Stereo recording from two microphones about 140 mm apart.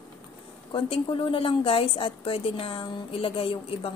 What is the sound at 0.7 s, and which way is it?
A woman's voice, 40° left (ahead or behind).